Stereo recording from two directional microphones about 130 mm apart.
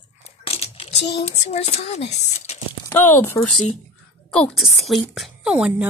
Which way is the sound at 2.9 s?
15° left (ahead or behind).